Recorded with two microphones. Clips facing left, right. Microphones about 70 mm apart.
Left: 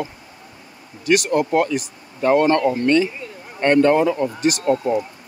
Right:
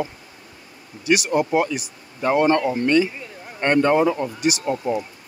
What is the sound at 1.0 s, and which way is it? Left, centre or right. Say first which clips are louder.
Speech: left 2 dB; centre.